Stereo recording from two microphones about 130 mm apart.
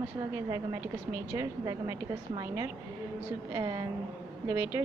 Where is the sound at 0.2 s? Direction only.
35° right (ahead or behind).